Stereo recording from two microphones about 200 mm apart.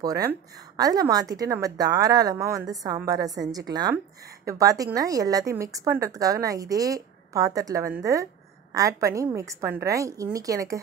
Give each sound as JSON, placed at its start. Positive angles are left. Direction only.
{"t": 0.3, "sound": "a woman's voice", "side_deg": -20}